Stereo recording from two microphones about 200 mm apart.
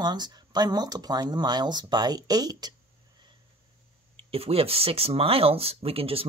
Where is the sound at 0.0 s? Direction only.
20° right (ahead or behind).